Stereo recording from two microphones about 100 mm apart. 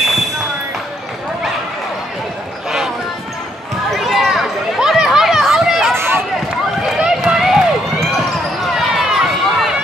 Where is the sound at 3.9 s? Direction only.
Centre (ahead or behind).